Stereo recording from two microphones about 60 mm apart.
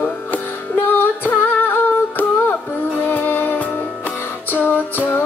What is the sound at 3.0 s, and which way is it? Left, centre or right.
Music, left.